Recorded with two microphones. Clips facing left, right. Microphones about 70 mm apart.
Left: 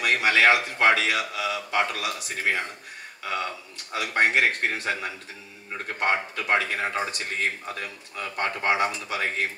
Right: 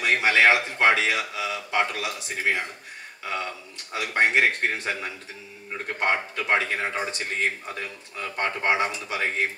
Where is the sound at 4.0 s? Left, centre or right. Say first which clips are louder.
Even; centre.